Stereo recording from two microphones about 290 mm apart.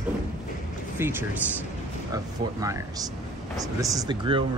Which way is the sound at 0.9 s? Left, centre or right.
Centre.